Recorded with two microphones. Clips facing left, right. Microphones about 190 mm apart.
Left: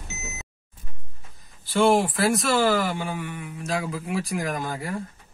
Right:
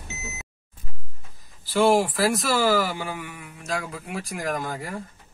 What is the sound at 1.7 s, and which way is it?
Speech, centre (ahead or behind).